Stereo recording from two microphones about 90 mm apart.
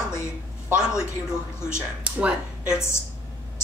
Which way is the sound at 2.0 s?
15° right (ahead or behind).